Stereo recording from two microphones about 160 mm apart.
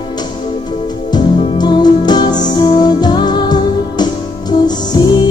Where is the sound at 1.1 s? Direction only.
25° left (ahead or behind).